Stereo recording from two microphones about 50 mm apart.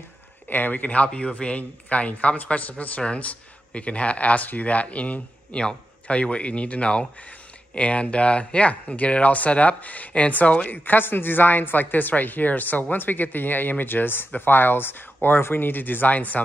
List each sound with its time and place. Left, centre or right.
0.5 s speech: left
10.7 s speech: left